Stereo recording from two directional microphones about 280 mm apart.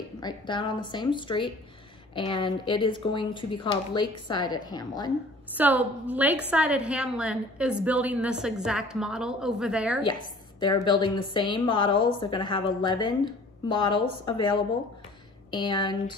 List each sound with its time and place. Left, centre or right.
0.2 s a woman's voice: centre
5.5 s a woman's voice: centre
10.6 s a woman's voice: centre